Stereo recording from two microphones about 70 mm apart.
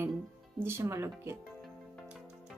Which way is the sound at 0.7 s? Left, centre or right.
Right.